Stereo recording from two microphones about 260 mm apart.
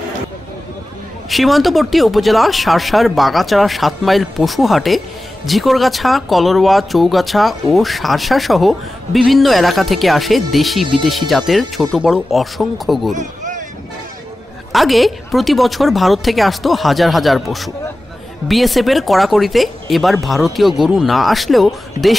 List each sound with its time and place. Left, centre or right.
1.3 s speech: centre
13.1 s a sound: right
14.7 s speech: centre